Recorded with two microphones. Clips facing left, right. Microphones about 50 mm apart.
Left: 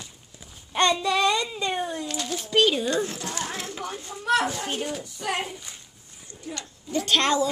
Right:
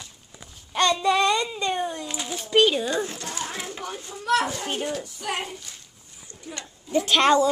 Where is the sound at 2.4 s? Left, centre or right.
Centre.